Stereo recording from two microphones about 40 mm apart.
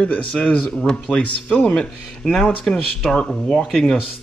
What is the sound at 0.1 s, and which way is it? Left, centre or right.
Speech, left.